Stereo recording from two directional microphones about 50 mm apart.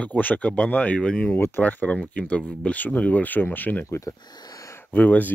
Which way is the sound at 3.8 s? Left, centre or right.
Left.